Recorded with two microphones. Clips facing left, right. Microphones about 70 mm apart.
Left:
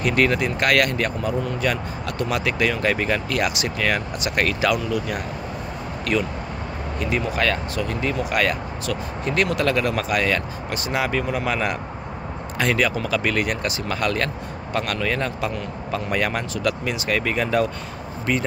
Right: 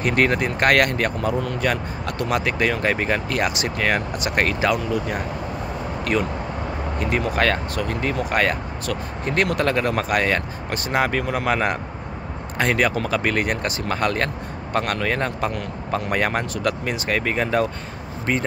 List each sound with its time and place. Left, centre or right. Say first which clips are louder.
0.0 s speech: even; right
7.0 s speech: right 1 dB; right